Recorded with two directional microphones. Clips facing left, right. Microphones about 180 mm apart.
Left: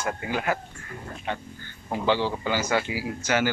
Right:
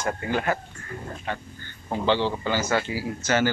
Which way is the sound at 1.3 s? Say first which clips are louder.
Left 1 dB; 20° left (ahead or behind).